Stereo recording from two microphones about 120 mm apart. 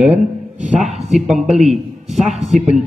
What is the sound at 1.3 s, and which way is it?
A man's voice, centre (ahead or behind).